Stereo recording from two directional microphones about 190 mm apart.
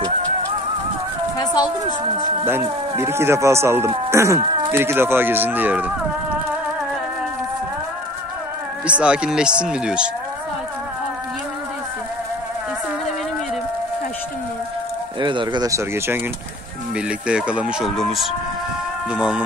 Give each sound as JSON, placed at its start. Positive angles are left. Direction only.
{"t": 1.4, "sound": "a sound", "side_deg": 20}
{"t": 2.4, "sound": "speech", "side_deg": -15}
{"t": 8.8, "sound": "speech", "side_deg": -5}
{"t": 15.1, "sound": "speech", "side_deg": -25}